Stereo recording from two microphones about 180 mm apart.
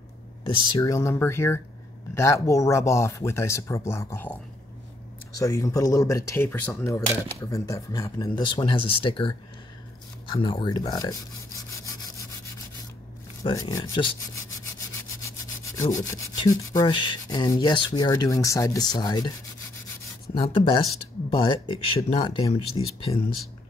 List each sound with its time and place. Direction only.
0.5 s speech: 25° left (ahead or behind)
11.8 s rub: 20° left (ahead or behind)
13.5 s speech: 20° left (ahead or behind)
15.8 s speech: 15° left (ahead or behind)
20.4 s speech: 30° left (ahead or behind)